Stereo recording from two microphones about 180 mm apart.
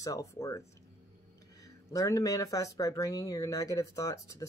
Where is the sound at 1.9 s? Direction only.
15° left (ahead or behind).